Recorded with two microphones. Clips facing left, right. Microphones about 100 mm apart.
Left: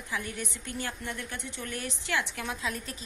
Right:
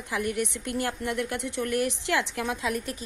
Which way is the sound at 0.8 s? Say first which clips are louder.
Right 8 dB; 90° right.